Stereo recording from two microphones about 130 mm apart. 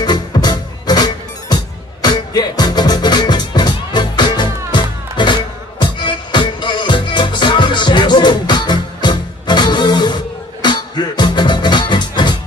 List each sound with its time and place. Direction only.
0.0 s music: 35° left (ahead or behind)